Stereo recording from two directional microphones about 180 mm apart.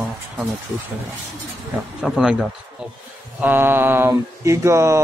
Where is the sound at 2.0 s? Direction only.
Centre (ahead or behind).